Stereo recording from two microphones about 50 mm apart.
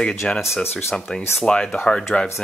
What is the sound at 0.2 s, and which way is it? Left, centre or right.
Speech, centre.